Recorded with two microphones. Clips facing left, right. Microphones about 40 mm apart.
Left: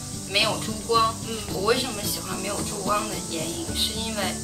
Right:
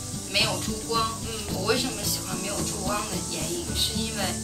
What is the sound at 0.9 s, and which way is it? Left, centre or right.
Music, left.